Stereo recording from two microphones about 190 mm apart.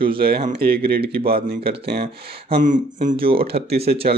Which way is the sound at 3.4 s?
60° right (ahead or behind).